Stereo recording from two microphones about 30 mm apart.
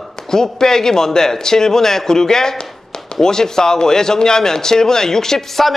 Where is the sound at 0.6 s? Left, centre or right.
Centre.